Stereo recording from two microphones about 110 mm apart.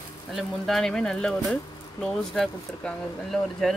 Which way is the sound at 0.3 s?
Centre (ahead or behind).